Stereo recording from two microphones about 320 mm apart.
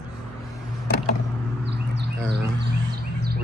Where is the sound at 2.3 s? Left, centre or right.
Right.